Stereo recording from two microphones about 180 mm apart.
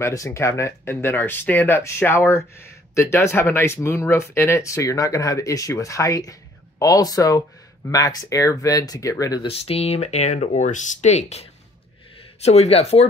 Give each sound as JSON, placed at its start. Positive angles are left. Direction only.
{"t": 0.0, "sound": "speech", "side_deg": 15}
{"t": 9.5, "sound": "speech", "side_deg": 35}